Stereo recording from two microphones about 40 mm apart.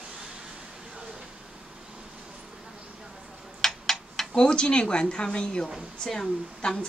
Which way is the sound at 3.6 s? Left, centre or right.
Centre.